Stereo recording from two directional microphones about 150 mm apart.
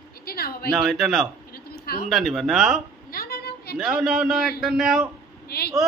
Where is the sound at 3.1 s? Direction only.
90° left.